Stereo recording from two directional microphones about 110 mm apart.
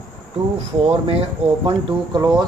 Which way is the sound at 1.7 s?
40° right (ahead or behind).